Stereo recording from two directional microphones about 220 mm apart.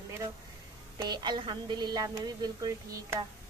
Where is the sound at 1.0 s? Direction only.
20° right (ahead or behind).